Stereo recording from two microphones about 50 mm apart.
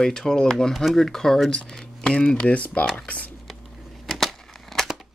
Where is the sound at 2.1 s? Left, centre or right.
Centre.